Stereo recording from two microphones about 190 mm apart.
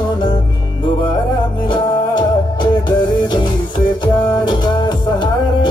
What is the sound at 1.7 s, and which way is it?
Music, 25° left (ahead or behind).